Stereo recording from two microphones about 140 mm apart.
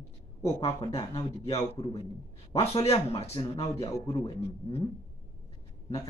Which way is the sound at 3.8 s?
25° left (ahead or behind).